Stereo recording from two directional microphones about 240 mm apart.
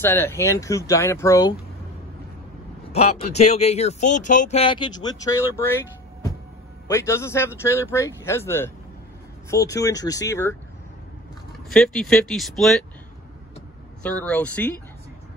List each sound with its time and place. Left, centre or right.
0.0 s speech: centre
2.9 s speech: left
6.9 s speech: centre
11.7 s speech: centre
14.0 s speech: centre